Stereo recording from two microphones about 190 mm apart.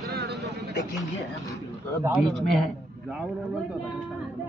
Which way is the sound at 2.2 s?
Centre (ahead or behind).